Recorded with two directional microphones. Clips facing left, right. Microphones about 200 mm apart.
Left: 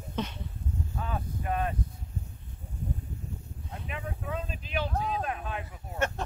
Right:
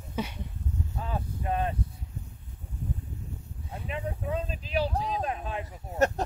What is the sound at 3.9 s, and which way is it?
Speech, 30° right (ahead or behind).